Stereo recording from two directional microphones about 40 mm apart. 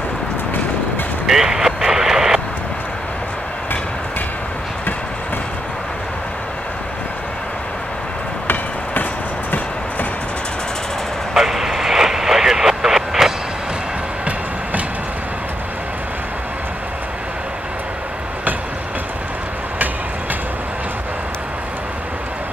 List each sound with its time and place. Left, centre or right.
1.2 s radio: centre
11.3 s vehicle: centre